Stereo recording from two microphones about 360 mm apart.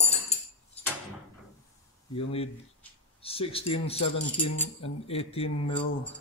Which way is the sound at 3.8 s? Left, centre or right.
Centre.